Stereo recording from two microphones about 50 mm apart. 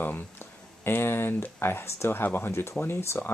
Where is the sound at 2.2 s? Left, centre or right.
Left.